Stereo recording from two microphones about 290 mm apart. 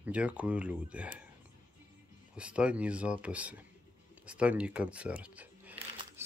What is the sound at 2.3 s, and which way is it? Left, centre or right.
Speech, centre.